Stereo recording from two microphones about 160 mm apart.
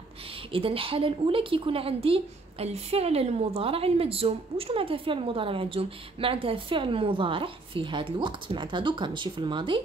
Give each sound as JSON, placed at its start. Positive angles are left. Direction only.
{"t": 0.5, "sound": "speech", "side_deg": -35}